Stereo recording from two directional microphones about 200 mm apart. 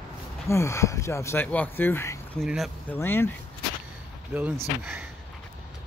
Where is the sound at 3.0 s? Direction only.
10° left (ahead or behind).